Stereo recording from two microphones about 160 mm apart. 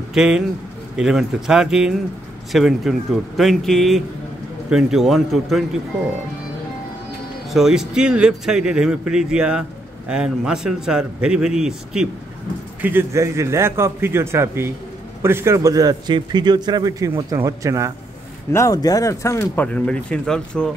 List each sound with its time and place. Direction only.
0.1 s a man's voice: 5° right (ahead or behind)
7.5 s speech: centre (ahead or behind)
12.8 s a man's voice: 15° right (ahead or behind)
18.5 s speech: 20° left (ahead or behind); by 20.7 s 5° left (ahead or behind)